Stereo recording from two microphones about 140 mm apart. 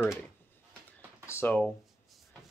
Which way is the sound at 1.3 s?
15° left (ahead or behind).